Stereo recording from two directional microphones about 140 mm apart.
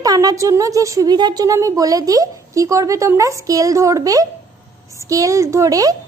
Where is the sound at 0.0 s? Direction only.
25° right (ahead or behind).